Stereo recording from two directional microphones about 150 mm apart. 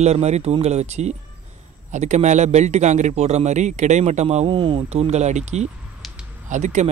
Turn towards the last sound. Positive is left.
turn(degrees=-55)  # may be behind; listen again after turning